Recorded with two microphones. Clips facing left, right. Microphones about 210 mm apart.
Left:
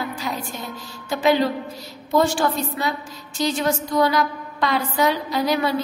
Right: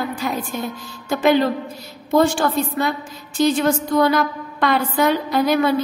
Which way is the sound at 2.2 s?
55° right (ahead or behind).